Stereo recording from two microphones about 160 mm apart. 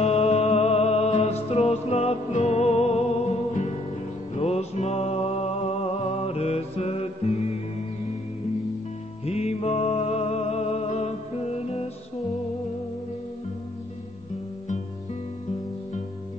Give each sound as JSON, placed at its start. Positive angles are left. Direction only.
{"t": 0.0, "sound": "music", "side_deg": 40}
{"t": 9.2, "sound": "music", "side_deg": 40}